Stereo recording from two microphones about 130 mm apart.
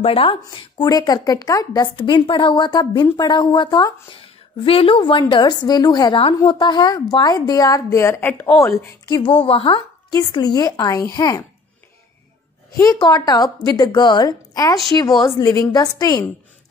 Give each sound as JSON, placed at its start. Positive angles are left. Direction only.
{"t": 0.0, "sound": "speech", "side_deg": 45}
{"t": 2.0, "sound": "speech", "side_deg": 40}
{"t": 4.6, "sound": "speech", "side_deg": 45}
{"t": 9.1, "sound": "speech", "side_deg": 40}
{"t": 12.7, "sound": "speech", "side_deg": 30}